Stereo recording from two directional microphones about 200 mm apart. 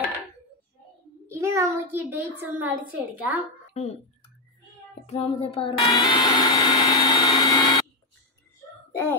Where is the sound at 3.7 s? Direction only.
35° left (ahead or behind).